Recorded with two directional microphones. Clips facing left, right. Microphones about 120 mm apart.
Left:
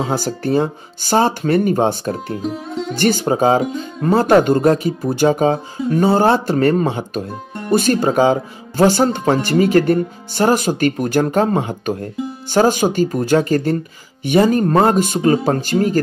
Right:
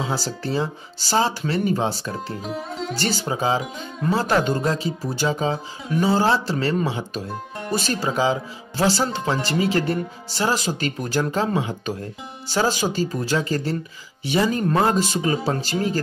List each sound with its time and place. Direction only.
0.0 s speech: 50° left (ahead or behind)
2.4 s speech: centre (ahead or behind)
3.0 s speech: 55° left (ahead or behind)